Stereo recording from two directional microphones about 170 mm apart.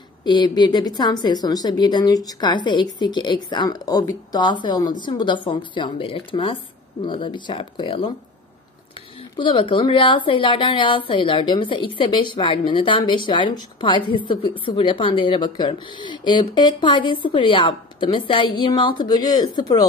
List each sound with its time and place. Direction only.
0.2 s a woman's voice: 25° left (ahead or behind)
9.4 s a woman's voice: 30° left (ahead or behind)